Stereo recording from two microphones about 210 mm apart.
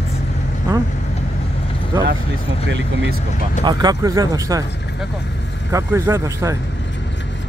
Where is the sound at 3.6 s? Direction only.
15° right (ahead or behind).